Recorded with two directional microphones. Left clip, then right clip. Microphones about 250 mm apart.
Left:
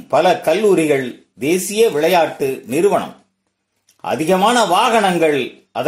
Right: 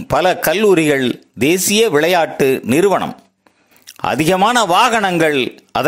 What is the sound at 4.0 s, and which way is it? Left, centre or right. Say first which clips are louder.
A man's voice: right 1 dB; right.